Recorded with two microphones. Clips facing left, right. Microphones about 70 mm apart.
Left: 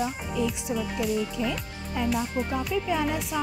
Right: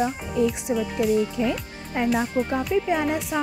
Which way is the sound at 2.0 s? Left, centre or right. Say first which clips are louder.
Right 4 dB; right.